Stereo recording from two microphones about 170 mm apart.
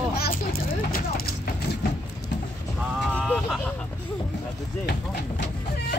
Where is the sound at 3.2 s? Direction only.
10° left (ahead or behind).